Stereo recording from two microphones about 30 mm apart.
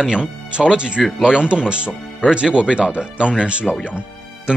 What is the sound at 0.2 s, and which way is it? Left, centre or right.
Speech, right.